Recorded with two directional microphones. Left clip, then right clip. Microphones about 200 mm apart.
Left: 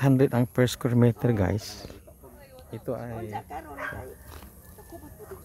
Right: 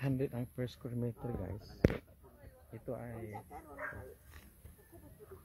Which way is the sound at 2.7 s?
5° left (ahead or behind).